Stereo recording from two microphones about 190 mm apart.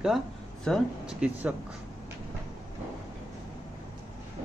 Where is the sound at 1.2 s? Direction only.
10° right (ahead or behind).